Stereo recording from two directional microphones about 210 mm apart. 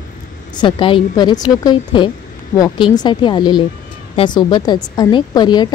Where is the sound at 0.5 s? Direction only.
25° left (ahead or behind).